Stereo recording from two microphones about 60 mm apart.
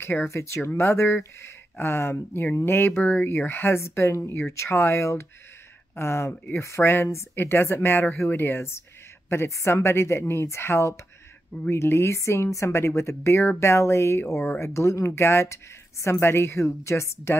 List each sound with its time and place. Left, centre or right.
0.0 s speech: left